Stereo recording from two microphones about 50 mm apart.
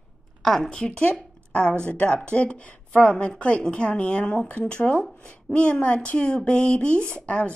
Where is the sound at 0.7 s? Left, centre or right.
Centre.